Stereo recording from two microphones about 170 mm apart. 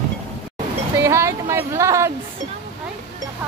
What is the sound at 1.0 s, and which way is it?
Speech, 15° right (ahead or behind).